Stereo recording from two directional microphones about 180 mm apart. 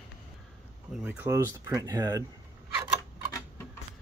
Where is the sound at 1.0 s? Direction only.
10° right (ahead or behind).